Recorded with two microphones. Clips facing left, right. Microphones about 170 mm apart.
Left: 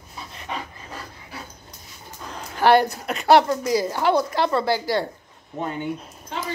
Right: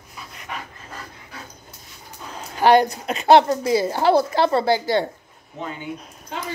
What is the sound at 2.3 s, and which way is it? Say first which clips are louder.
A woman's voice: right 1 dB; 15° right (ahead or behind).